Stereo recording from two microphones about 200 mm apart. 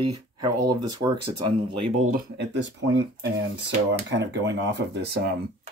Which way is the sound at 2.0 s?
40° right (ahead or behind).